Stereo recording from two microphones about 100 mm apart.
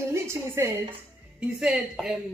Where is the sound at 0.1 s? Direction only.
25° right (ahead or behind).